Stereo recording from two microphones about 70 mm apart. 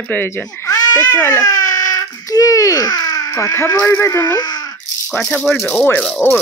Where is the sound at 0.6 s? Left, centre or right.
Left.